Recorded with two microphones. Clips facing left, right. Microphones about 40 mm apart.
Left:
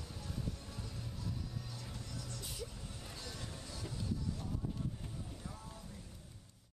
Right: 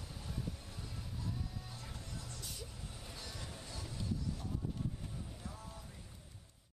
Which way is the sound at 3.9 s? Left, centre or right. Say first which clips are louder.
Even; centre.